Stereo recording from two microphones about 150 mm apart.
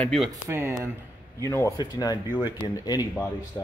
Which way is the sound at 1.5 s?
25° left (ahead or behind).